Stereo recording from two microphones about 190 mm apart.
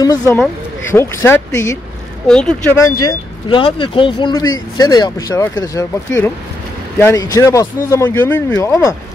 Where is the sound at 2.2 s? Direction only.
5° left (ahead or behind).